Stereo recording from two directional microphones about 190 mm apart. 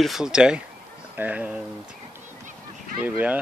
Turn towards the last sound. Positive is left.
turn(degrees=-10)  # may be behind; listen again after turning